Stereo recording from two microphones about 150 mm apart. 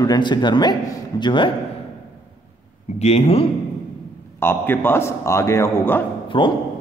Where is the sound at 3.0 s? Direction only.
40° left (ahead or behind).